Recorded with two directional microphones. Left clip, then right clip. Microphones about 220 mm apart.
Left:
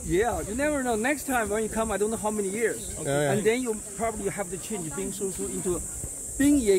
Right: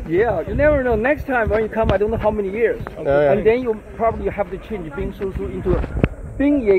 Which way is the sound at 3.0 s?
55° left (ahead or behind).